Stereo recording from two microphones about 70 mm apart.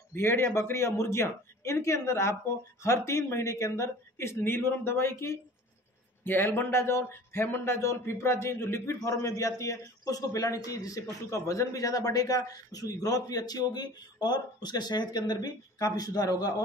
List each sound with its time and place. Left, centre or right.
0.1 s speech: left